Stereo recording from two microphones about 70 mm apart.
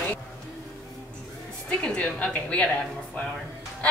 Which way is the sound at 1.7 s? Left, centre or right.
Centre.